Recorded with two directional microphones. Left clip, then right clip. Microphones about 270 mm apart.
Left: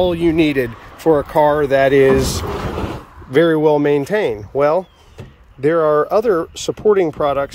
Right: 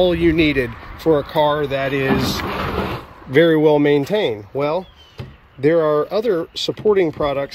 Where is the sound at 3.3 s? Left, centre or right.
Centre.